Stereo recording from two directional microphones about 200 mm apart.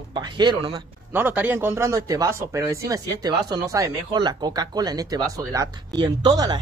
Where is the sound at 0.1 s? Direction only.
20° right (ahead or behind).